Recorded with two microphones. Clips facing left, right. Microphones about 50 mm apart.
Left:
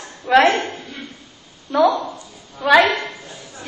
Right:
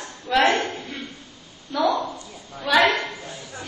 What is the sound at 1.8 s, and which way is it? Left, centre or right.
A woman's voice, left.